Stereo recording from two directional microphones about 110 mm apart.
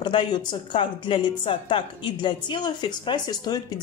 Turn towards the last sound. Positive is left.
turn(degrees=40)  # may be behind; listen again after turning